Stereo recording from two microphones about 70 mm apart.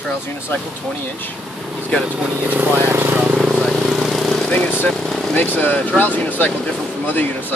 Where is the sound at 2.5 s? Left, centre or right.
Right.